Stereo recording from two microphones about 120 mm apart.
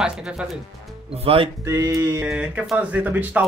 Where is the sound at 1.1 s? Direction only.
55° right (ahead or behind).